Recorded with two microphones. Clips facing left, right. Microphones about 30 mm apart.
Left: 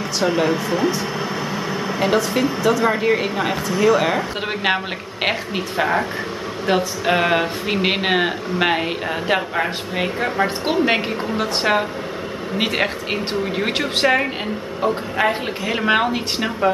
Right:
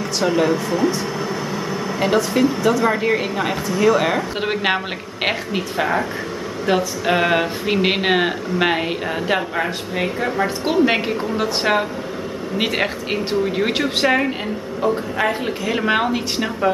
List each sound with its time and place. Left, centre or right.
0.2 s a woman's voice: centre
2.0 s a woman's voice: centre
7.1 s a woman's voice: centre